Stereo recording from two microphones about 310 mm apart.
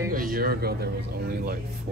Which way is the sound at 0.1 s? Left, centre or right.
Right.